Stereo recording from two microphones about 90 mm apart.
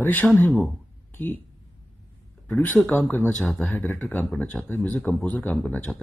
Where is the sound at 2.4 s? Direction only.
20° left (ahead or behind).